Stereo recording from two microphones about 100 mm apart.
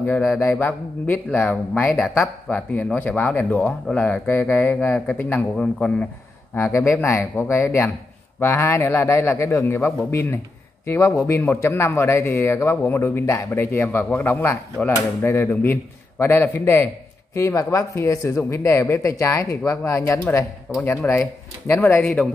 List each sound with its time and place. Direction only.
0.4 s speech: 20° left (ahead or behind)
1.7 s speech: 5° left (ahead or behind)
6.5 s speech: 25° left (ahead or behind)
20.7 s speech: 5° right (ahead or behind)
21.1 s speech: 25° left (ahead or behind)
22.0 s speech: 10° left (ahead or behind)